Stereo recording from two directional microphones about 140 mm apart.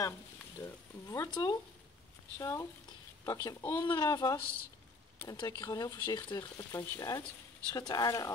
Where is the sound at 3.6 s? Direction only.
15° left (ahead or behind).